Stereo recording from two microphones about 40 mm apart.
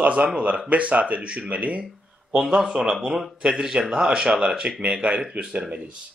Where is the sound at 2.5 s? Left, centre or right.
Centre.